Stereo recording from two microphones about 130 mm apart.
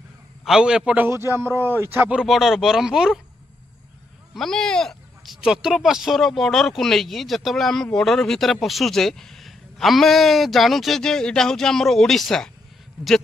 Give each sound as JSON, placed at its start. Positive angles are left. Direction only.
{"t": 0.5, "sound": "a man's voice", "side_deg": -5}
{"t": 2.1, "sound": "speech", "side_deg": 0}
{"t": 4.3, "sound": "speech", "side_deg": 5}